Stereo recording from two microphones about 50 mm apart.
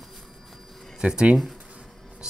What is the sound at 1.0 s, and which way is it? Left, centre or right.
Speech, centre.